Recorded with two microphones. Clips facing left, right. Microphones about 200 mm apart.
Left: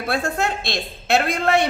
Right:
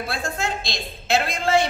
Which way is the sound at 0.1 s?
65° left (ahead or behind).